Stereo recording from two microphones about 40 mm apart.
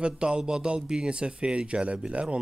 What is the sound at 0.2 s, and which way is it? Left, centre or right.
Speech, centre.